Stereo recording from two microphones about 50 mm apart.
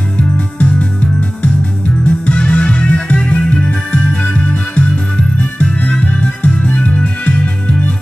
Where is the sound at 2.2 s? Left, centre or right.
Left.